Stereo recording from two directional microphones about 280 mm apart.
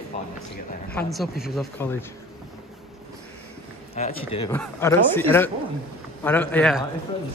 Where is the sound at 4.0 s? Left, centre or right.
Left.